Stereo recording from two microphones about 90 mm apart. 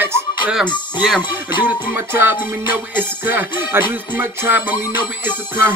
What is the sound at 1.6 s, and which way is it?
Speech, 25° right (ahead or behind).